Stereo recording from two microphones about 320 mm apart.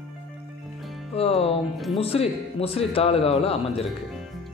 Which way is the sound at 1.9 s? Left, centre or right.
Centre.